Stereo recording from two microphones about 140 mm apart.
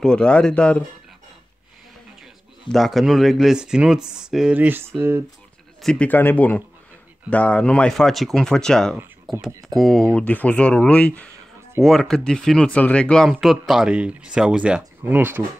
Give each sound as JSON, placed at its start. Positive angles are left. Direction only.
{"t": 0.0, "sound": "speech", "side_deg": 5}
{"t": 2.7, "sound": "speech", "side_deg": 0}
{"t": 5.8, "sound": "speech", "side_deg": 5}
{"t": 9.5, "sound": "speech", "side_deg": -25}
{"t": 9.8, "sound": "speech", "side_deg": 0}